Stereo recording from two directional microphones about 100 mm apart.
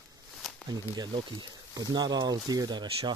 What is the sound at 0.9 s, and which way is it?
Speech, 50° right (ahead or behind).